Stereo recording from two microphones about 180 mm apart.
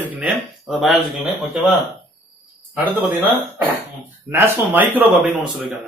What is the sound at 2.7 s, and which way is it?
Speech, 10° right (ahead or behind).